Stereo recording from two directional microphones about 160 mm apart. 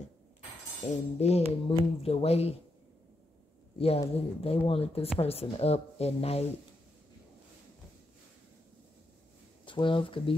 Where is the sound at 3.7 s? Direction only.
40° left (ahead or behind).